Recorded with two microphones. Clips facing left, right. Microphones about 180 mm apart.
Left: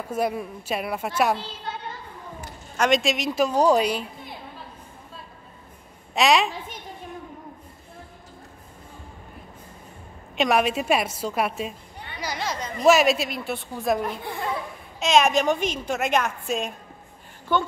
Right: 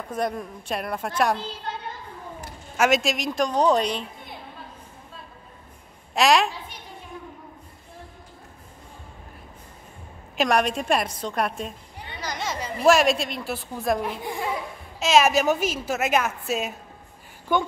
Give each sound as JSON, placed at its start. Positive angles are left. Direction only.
{"t": 0.1, "sound": "a woman's voice", "side_deg": 5}
{"t": 2.8, "sound": "a woman's voice", "side_deg": 0}
{"t": 6.1, "sound": "a woman's voice", "side_deg": 0}
{"t": 6.5, "sound": "a woman's voice", "side_deg": 45}
{"t": 10.3, "sound": "a woman's voice", "side_deg": 0}
{"t": 14.2, "sound": "speech", "side_deg": -15}
{"t": 15.0, "sound": "a woman's voice", "side_deg": -5}